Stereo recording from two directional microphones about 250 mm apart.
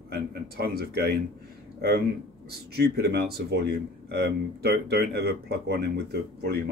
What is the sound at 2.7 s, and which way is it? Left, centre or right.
Speech, right.